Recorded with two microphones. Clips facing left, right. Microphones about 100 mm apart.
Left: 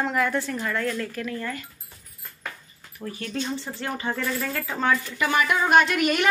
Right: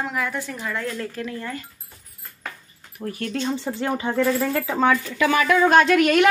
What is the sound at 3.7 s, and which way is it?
Speech, 60° right (ahead or behind).